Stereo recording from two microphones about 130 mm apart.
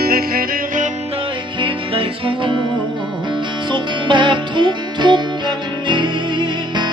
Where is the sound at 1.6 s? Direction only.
40° right (ahead or behind).